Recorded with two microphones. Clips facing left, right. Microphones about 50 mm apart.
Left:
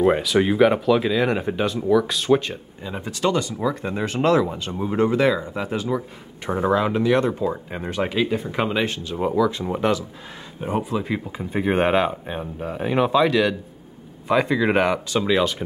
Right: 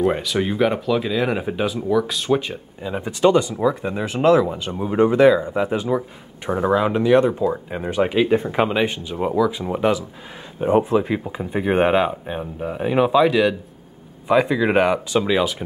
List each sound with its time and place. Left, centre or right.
0.0 s speech: centre
3.0 s speech: centre
3.5 s speech: centre
10.7 s speech: right
11.0 s speech: centre